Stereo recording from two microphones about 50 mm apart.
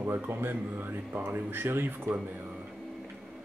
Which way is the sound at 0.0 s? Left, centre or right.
Right.